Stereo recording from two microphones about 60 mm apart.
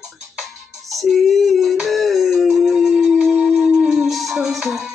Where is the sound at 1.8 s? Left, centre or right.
Centre.